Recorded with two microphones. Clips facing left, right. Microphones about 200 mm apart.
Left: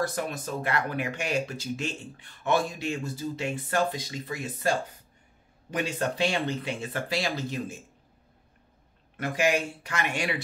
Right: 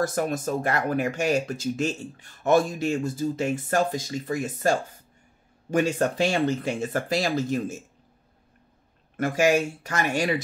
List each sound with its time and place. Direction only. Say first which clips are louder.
0.0 s speech: right 5 dB; 45° right (ahead or behind)
9.1 s speech: right 5 dB; 45° right (ahead or behind)